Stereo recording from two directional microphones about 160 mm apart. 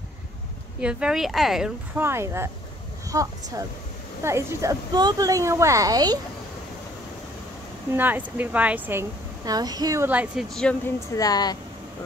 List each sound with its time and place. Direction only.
0.7 s speech: 5° right (ahead or behind)
2.0 s a woman's voice: 15° right (ahead or behind)
7.9 s speech: 10° right (ahead or behind)
9.4 s a woman's voice: 25° right (ahead or behind)
10.5 s speech: 5° left (ahead or behind)
11.1 s speech: 25° left (ahead or behind)